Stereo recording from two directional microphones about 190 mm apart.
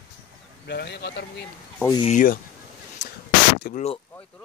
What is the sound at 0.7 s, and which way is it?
Speech, 60° left (ahead or behind).